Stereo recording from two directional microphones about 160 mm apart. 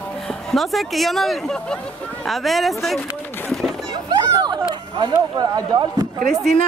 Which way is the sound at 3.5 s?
Centre (ahead or behind).